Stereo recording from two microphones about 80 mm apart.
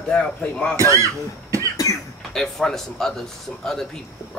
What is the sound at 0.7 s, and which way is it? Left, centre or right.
Speech, right.